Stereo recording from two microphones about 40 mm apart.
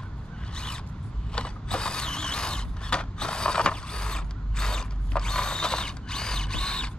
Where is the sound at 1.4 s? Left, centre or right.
Left.